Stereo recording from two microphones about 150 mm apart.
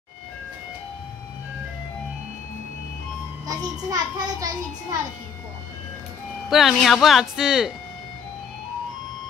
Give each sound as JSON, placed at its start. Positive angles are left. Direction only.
{"t": 3.4, "sound": "a child's voice", "side_deg": -25}
{"t": 6.5, "sound": "speech", "side_deg": 0}